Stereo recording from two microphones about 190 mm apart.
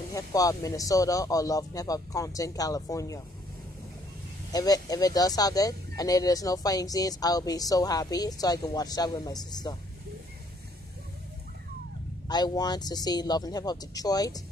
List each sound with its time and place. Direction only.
0.1 s speech: 20° left (ahead or behind)
4.5 s speech: 20° left (ahead or behind)
12.3 s speech: 20° left (ahead or behind)